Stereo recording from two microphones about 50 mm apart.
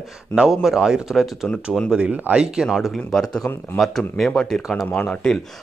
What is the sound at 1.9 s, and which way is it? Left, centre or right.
Speech, right.